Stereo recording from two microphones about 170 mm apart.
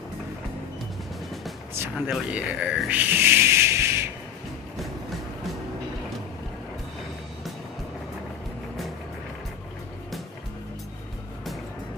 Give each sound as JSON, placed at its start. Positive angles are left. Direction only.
{"t": 2.0, "sound": "speech", "side_deg": -5}